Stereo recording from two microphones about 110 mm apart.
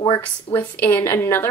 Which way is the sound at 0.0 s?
40° left (ahead or behind).